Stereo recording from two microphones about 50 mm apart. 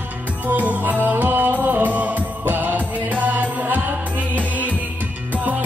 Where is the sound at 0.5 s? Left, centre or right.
Right.